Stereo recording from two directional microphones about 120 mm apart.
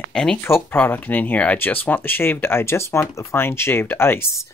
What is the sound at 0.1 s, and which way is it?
Speech, 5° left (ahead or behind).